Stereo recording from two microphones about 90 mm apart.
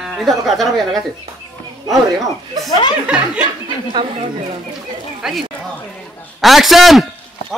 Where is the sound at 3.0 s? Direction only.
15° right (ahead or behind).